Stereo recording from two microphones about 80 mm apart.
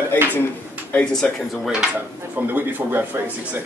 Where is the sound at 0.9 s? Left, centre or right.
Centre.